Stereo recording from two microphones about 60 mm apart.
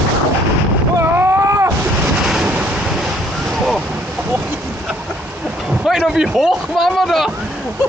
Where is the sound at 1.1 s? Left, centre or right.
Right.